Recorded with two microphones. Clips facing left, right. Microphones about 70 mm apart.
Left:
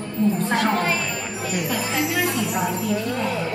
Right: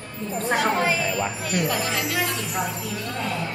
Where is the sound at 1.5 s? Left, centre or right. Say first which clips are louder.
Left 2 dB; centre.